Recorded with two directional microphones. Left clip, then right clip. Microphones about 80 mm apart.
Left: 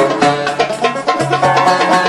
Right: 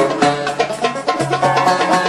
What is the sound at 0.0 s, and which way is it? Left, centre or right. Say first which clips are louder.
Music: left 3 dB; left.